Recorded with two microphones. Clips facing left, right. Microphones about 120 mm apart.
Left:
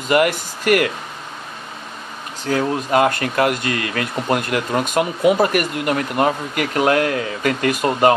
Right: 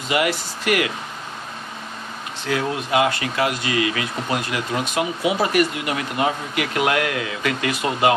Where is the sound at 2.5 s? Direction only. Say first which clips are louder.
Left 3 dB; 45° left (ahead or behind).